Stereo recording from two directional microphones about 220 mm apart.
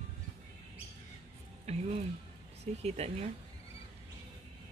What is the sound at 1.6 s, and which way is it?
Speech, 30° right (ahead or behind).